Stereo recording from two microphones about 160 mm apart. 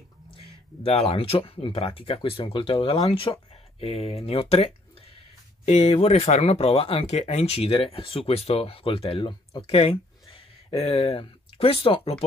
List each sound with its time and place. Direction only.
0.8 s speech: 35° left (ahead or behind)